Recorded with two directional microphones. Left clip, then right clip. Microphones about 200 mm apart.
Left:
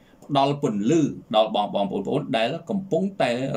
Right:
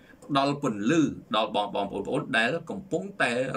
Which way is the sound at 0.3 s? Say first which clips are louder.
Left 4 dB; 10° left (ahead or behind).